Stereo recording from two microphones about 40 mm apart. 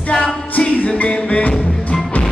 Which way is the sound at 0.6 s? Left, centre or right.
Left.